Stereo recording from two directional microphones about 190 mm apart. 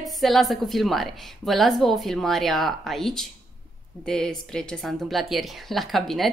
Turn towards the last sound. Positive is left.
turn(degrees=0)  # may be behind; listen again after turning